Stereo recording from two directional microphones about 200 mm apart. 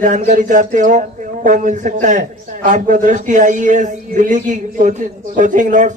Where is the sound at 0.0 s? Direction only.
40° right (ahead or behind).